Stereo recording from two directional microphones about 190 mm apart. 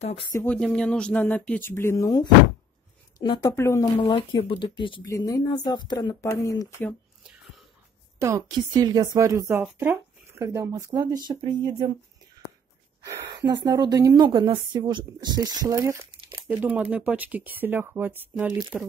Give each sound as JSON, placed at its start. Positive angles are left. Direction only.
{"t": 0.3, "sound": "speech", "side_deg": 10}
{"t": 4.0, "sound": "speech", "side_deg": 30}
{"t": 8.2, "sound": "a woman's voice", "side_deg": -15}
{"t": 13.0, "sound": "a woman's voice", "side_deg": -20}